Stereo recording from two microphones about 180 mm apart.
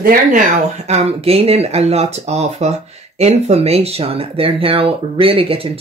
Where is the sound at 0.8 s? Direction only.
35° right (ahead or behind).